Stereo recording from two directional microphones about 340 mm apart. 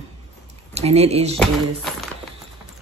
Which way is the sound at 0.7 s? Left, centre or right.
Centre.